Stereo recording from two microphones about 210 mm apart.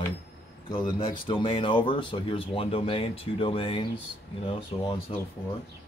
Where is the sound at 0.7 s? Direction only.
25° left (ahead or behind).